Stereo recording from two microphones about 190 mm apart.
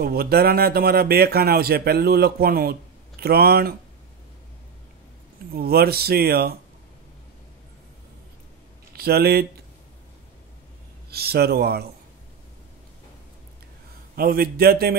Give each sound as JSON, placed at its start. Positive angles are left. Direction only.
{"t": 0.0, "sound": "a man's voice", "side_deg": -55}
{"t": 5.5, "sound": "speech", "side_deg": -55}
{"t": 8.9, "sound": "speech", "side_deg": -55}
{"t": 11.1, "sound": "speech", "side_deg": -55}
{"t": 14.1, "sound": "a man's voice", "side_deg": -50}